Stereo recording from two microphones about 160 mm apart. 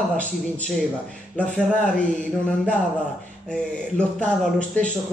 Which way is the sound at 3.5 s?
5° left (ahead or behind).